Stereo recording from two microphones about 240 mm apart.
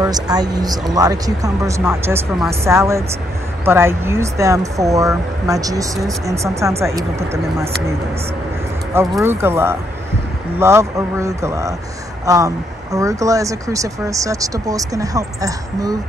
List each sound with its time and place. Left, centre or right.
0.0 s speech: centre
9.1 s speech: centre